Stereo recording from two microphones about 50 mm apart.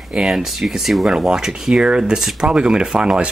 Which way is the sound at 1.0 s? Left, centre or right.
Centre.